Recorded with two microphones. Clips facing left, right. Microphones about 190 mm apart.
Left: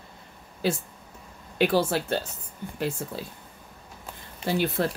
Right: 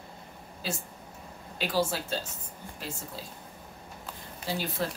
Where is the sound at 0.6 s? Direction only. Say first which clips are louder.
Left 9 dB; 65° left (ahead or behind).